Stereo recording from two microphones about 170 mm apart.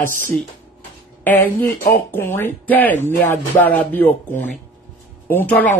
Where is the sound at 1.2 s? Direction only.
10° left (ahead or behind).